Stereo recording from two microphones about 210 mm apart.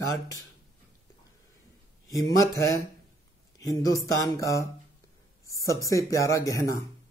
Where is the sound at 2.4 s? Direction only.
15° left (ahead or behind).